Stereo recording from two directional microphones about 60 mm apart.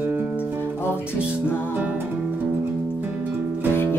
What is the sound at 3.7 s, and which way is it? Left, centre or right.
Music, left.